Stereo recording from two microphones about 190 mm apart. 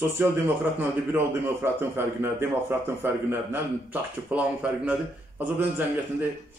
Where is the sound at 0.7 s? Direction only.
10° right (ahead or behind).